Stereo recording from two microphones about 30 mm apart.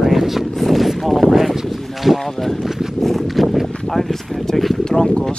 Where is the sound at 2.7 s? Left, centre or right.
Centre.